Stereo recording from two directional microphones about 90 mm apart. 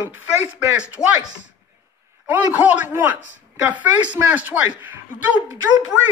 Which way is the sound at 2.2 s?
15° right (ahead or behind).